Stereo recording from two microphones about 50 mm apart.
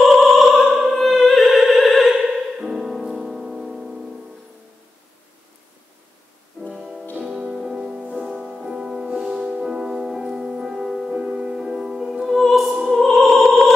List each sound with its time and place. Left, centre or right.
0.0 s opera: centre
2.6 s music: centre
6.7 s music: centre